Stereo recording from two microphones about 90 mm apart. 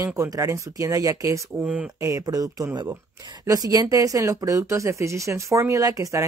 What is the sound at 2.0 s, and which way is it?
Speech, 40° right (ahead or behind).